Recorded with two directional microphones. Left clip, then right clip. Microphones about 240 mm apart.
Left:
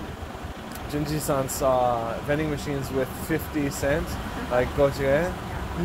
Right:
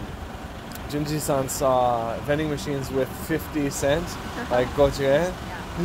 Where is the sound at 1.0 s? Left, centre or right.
Centre.